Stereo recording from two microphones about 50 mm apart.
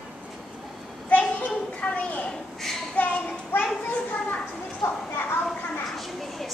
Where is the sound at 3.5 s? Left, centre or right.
Left.